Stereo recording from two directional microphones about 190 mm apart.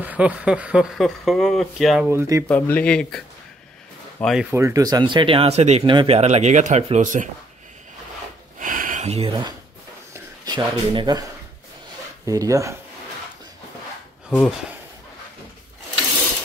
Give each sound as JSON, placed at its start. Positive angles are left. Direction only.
{"t": 0.0, "sound": "speech", "side_deg": -5}
{"t": 2.0, "sound": "speech", "side_deg": -15}
{"t": 2.4, "sound": "speech", "side_deg": 5}
{"t": 4.6, "sound": "speech", "side_deg": -15}
{"t": 8.5, "sound": "a sound", "side_deg": -45}
{"t": 10.1, "sound": "speech", "side_deg": -20}
{"t": 12.3, "sound": "speech", "side_deg": -15}